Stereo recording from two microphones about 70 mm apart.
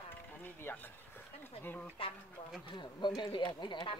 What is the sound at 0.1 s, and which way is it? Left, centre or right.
Speech, left.